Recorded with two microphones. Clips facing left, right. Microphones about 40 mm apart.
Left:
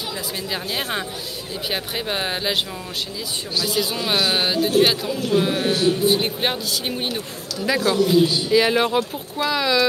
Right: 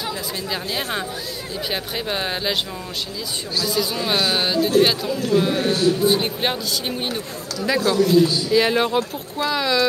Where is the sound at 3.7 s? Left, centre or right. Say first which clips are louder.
Right 1 dB; centre.